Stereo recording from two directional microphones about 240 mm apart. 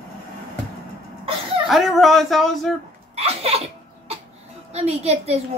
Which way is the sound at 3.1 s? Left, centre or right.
Right.